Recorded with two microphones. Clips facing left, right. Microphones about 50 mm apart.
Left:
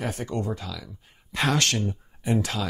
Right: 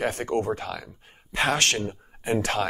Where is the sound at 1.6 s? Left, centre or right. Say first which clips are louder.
Right 1 dB; right.